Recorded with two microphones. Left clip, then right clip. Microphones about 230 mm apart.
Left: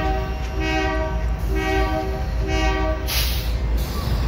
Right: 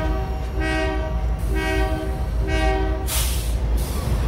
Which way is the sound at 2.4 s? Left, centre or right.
Right.